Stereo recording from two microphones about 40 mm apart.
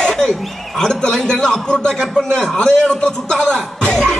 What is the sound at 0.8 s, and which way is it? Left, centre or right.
A man's voice, centre.